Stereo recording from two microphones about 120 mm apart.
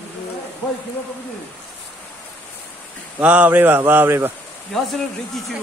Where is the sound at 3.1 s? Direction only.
10° right (ahead or behind).